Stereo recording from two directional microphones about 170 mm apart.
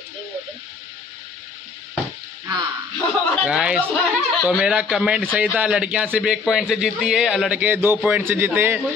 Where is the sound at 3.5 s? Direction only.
5° right (ahead or behind).